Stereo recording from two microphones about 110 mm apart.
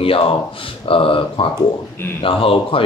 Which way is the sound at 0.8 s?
55° left (ahead or behind).